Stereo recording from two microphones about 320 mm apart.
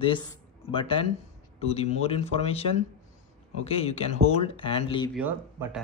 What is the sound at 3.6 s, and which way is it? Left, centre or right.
Speech, centre.